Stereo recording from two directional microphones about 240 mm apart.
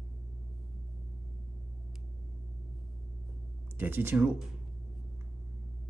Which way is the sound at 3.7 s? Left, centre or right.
Centre.